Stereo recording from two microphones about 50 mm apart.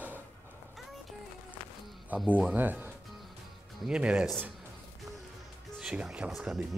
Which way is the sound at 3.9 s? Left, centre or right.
Right.